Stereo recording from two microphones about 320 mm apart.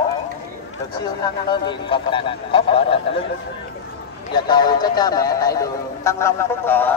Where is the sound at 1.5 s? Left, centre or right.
Centre.